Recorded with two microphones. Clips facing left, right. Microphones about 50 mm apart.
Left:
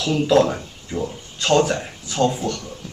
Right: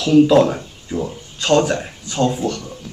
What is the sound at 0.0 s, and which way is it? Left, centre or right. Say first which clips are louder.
A man's voice: right 5 dB; centre.